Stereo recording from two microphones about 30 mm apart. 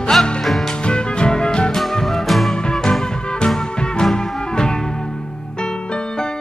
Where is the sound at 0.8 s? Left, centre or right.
Left.